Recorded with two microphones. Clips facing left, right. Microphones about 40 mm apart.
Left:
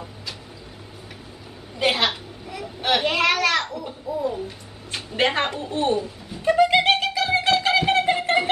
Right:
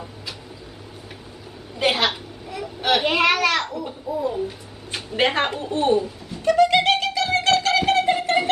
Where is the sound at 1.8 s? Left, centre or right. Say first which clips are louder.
Right 1 dB; centre.